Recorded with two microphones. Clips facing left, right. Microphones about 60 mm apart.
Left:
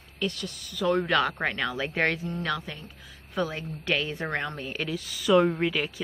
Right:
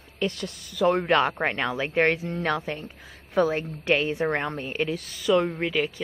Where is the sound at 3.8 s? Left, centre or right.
Right.